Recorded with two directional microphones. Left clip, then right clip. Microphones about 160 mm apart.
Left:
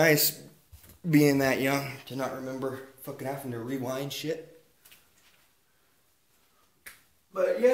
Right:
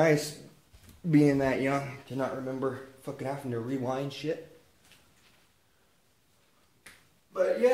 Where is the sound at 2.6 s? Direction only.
40° right (ahead or behind).